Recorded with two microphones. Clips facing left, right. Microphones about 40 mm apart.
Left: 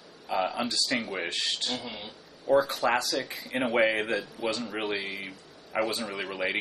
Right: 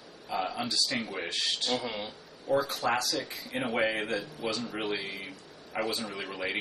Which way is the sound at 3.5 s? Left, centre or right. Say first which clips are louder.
Left 4 dB; left.